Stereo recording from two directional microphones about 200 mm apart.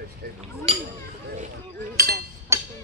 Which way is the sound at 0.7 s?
30° right (ahead or behind).